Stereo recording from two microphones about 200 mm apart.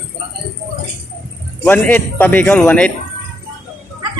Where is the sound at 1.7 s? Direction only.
10° left (ahead or behind).